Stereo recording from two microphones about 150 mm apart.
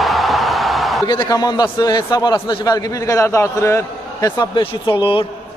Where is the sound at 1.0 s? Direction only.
30° left (ahead or behind).